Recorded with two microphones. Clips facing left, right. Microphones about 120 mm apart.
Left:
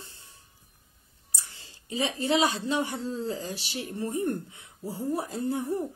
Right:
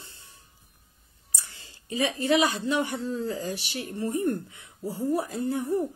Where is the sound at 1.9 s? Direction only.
20° left (ahead or behind).